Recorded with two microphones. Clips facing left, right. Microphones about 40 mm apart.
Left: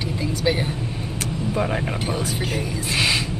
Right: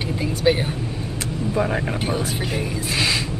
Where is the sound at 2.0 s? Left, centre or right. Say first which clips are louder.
Right 1 dB; right.